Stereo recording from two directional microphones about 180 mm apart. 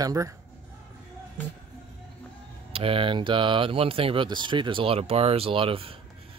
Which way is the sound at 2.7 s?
30° right (ahead or behind).